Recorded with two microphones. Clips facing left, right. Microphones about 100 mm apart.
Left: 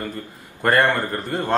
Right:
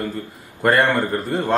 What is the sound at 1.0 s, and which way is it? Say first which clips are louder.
Speech: right 3 dB; 20° right (ahead or behind).